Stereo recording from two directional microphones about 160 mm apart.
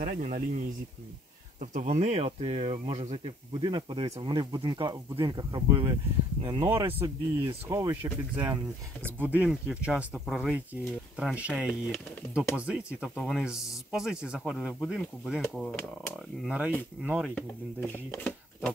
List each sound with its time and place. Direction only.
0.0 s speech: 55° right (ahead or behind)
1.6 s speech: 50° right (ahead or behind)
7.6 s speech: 15° right (ahead or behind)
9.0 s speech: 10° right (ahead or behind)
17.4 s speech: 10° left (ahead or behind)